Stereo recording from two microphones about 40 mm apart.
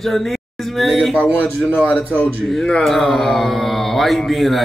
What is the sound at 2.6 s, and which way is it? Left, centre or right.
Speech, left.